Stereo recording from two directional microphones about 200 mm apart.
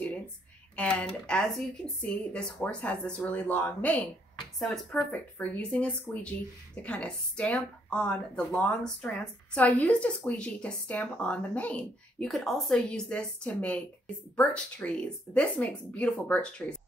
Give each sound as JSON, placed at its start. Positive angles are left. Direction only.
{"t": 0.7, "sound": "a woman's voice", "side_deg": 5}